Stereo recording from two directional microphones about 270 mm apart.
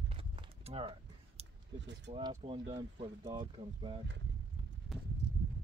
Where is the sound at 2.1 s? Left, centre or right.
Centre.